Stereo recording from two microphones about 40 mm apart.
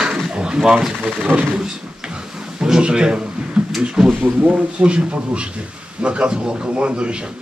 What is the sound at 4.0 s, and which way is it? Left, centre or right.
Speech, centre.